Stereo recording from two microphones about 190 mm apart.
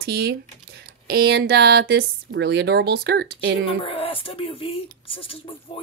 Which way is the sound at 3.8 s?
30° left (ahead or behind).